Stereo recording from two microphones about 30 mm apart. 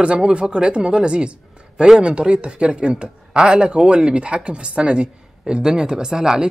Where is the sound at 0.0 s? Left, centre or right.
Right.